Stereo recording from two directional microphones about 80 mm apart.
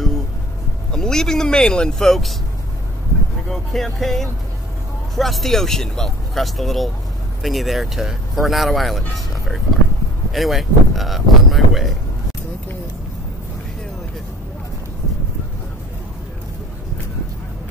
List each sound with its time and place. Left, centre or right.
0.9 s speech: centre
3.4 s speech: centre